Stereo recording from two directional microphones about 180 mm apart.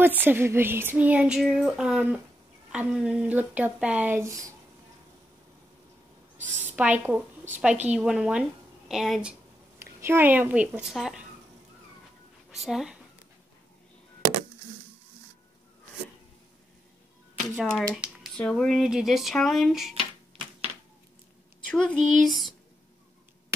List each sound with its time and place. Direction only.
0.0 s a sound: 10° right (ahead or behind)
6.7 s a woman's voice: 10° right (ahead or behind)
9.9 s a sound: 15° right (ahead or behind)
12.4 s speech: centre (ahead or behind)
17.9 s speech: 5° right (ahead or behind)
19.9 s typewriter: 30° right (ahead or behind)
21.6 s speech: 5° left (ahead or behind)